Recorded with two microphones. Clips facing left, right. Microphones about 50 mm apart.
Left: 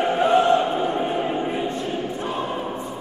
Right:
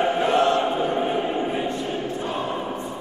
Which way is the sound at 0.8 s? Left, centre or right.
Centre.